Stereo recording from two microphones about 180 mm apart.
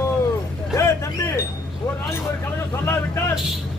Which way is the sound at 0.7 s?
15° left (ahead or behind).